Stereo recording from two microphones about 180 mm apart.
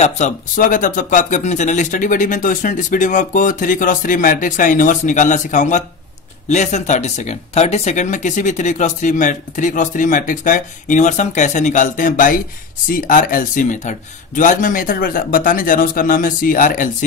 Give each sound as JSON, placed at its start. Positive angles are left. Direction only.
{"t": 0.0, "sound": "speech", "side_deg": 45}